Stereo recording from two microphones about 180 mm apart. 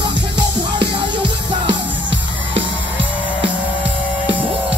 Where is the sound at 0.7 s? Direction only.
75° right (ahead or behind).